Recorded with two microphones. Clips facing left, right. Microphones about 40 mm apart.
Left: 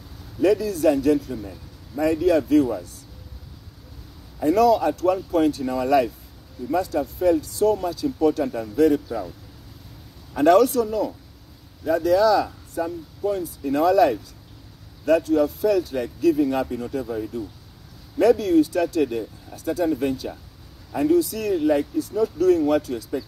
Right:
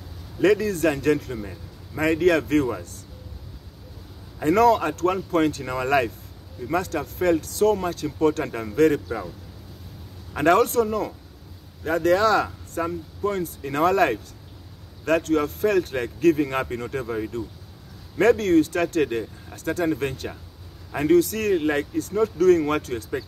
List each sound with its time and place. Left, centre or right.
0.4 s speech: right
2.0 s speech: right
4.4 s speech: right
6.7 s speech: right
10.3 s speech: right
21.1 s speech: right